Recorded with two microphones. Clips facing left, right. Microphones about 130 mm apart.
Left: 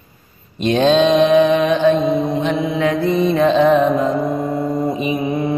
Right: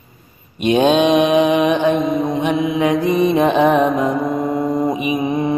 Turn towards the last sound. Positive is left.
turn(degrees=-20)  # may be behind; listen again after turning